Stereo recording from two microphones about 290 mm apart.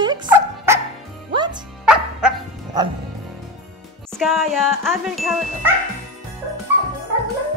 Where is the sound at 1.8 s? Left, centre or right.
Centre.